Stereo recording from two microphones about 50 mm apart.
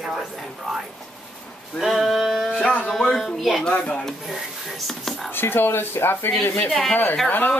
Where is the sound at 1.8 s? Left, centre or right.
Centre.